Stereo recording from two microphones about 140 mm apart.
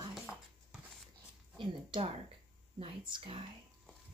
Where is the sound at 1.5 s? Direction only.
35° right (ahead or behind).